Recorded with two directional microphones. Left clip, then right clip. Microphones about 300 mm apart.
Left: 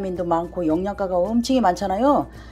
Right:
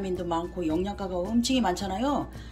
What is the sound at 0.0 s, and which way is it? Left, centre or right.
Speech, centre.